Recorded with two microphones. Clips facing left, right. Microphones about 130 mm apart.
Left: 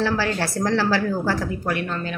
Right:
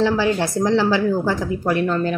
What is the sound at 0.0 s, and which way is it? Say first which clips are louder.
A woman's voice: right 4 dB; 20° right (ahead or behind).